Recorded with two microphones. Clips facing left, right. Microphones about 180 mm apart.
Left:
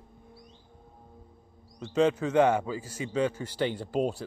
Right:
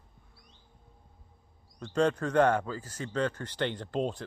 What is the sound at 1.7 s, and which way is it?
Speech, 5° left (ahead or behind).